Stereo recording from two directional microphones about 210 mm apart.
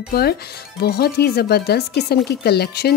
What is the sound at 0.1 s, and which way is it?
Speech, 50° left (ahead or behind).